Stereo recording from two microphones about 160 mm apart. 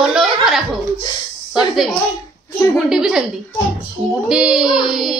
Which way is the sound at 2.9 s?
5° right (ahead or behind).